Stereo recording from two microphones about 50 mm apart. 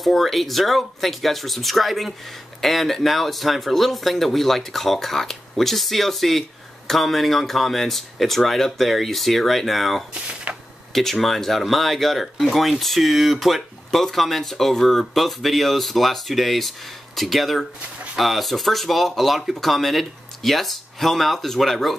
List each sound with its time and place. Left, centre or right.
0.0 s speech: centre
10.5 s a sound: right
10.9 s speech: centre